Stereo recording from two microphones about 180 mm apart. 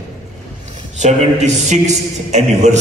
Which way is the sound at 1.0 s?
40° right (ahead or behind).